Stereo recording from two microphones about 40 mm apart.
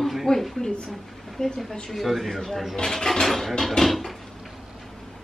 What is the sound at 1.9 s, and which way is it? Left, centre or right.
Speech, centre.